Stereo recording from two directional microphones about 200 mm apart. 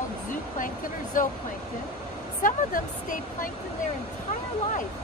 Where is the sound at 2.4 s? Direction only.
45° left (ahead or behind).